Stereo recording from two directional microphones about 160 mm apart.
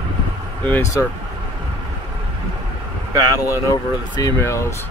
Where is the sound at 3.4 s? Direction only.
20° left (ahead or behind).